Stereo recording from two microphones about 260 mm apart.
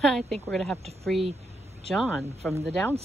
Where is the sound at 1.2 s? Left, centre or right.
Right.